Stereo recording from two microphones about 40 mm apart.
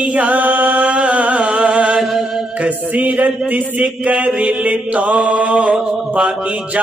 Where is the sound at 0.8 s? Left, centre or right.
Right.